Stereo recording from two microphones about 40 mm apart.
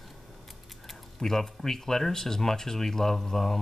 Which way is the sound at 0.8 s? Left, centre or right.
Centre.